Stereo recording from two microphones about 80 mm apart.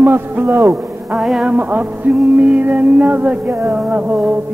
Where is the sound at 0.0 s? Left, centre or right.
Right.